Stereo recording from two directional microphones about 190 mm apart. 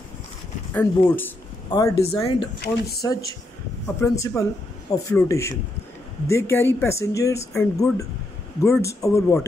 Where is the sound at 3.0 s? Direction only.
15° left (ahead or behind).